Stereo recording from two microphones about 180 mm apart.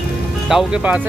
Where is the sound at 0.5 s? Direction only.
5° right (ahead or behind).